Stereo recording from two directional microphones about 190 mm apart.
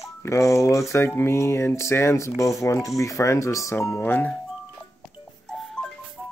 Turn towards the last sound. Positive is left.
turn(degrees=0)  # may be behind; listen again after turning